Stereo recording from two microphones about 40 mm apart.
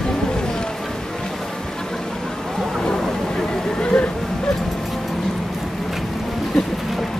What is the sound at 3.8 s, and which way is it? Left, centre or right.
Music, left.